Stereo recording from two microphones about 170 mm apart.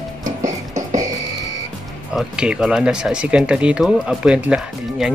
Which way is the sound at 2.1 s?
5° right (ahead or behind).